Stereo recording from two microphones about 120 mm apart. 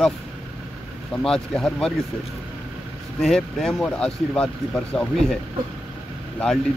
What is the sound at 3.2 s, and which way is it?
A man's voice, 5° left (ahead or behind).